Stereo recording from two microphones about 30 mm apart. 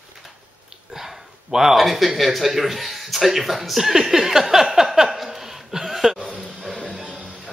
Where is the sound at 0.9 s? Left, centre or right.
Centre.